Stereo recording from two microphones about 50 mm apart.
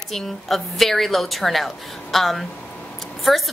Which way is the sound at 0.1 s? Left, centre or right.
Centre.